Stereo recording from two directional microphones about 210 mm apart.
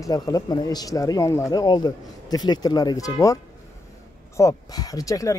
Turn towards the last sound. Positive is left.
turn(degrees=15)  # may be behind; listen again after turning